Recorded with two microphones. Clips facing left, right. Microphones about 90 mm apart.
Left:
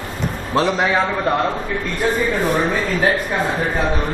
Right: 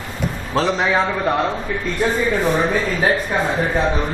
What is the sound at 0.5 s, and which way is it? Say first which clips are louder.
Speech: left 1 dB; 5° left (ahead or behind).